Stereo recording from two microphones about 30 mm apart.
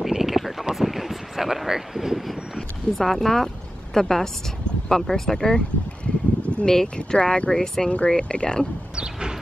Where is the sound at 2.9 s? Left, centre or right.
Centre.